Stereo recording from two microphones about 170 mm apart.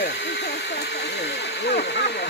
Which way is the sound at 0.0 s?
80° left.